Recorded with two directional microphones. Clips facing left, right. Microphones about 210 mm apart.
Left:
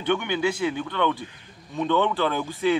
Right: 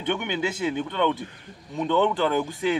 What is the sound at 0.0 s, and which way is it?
A man's voice, 20° right (ahead or behind).